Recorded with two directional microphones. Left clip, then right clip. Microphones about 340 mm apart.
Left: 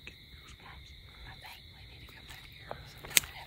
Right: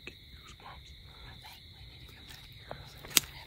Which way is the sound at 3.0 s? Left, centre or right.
Centre.